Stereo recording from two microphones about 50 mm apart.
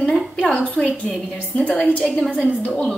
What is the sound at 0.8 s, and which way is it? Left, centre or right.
A woman's voice, left.